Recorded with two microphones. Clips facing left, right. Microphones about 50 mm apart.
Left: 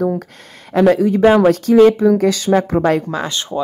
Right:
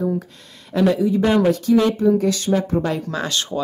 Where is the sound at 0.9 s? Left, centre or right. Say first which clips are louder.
Left 6 dB; left.